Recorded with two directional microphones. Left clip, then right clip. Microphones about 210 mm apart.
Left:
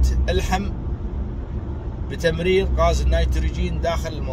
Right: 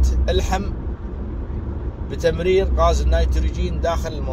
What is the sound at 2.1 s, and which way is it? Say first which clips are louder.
Speech: right 2 dB; 20° left (ahead or behind).